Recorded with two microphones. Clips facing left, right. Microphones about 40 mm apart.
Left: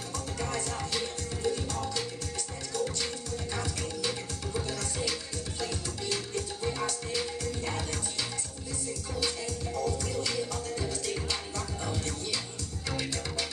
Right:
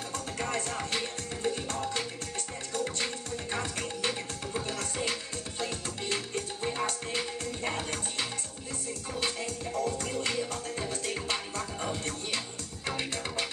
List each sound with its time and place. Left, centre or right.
0.4 s music: right
9.8 s music: right